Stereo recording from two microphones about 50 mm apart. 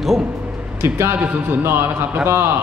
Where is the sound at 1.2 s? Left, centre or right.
Right.